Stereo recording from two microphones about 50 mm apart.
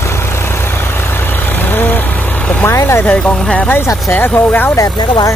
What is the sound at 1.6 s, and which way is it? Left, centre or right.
Vehicle, left.